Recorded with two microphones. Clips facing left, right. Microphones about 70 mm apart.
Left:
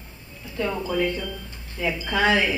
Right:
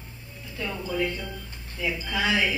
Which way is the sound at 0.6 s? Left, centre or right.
Left.